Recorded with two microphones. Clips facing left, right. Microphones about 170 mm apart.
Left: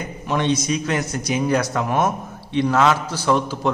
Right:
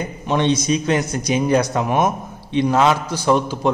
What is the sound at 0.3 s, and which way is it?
A man's voice, 25° right (ahead or behind).